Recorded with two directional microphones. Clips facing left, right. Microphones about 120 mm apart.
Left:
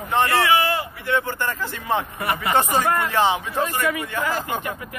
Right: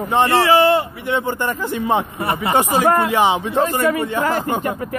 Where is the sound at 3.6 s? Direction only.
35° right (ahead or behind).